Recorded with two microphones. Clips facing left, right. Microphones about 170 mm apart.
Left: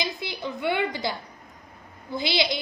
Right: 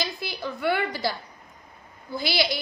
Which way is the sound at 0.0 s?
20° left (ahead or behind).